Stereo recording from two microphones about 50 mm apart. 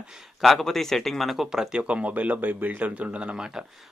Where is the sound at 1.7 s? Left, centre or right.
Right.